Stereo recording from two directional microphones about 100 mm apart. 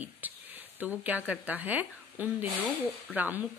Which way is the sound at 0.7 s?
15° right (ahead or behind).